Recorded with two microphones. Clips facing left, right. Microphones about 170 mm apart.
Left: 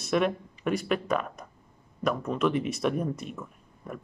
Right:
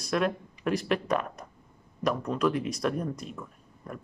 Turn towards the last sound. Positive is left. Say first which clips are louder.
# left 1 dB
turn(degrees=5)  # may be behind; listen again after turning